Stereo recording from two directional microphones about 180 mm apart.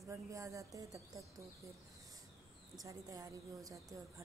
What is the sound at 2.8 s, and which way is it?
A woman's voice, 20° right (ahead or behind).